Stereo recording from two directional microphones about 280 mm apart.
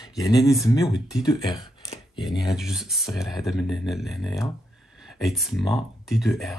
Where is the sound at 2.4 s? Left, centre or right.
Centre.